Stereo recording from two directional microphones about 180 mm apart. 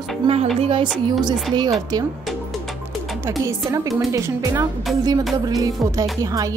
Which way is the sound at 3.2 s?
15° right (ahead or behind).